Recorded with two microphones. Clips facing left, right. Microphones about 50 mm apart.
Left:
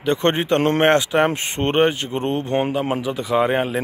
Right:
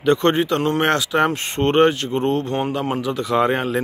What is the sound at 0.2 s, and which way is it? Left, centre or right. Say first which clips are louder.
Speech: even; left.